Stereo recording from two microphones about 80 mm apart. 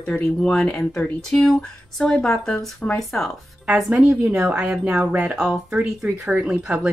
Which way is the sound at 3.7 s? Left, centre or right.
Centre.